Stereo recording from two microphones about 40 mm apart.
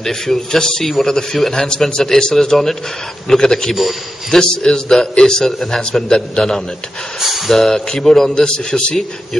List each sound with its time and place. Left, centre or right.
0.0 s a man's voice: centre
7.2 s a man's voice: centre